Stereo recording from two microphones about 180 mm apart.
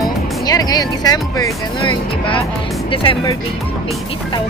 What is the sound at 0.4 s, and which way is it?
A woman's voice, 20° left (ahead or behind).